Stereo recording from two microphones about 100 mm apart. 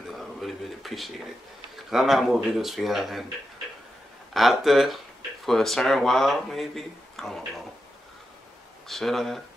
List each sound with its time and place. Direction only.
0.1 s speech: centre (ahead or behind)
4.3 s speech: centre (ahead or behind)
8.8 s speech: centre (ahead or behind)